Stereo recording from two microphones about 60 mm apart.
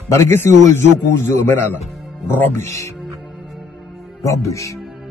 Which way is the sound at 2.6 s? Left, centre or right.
Left.